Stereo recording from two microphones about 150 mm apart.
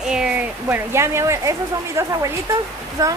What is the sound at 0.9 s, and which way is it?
A woman's voice, 20° right (ahead or behind).